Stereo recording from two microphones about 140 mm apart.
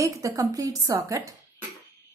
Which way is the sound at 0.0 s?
20° right (ahead or behind).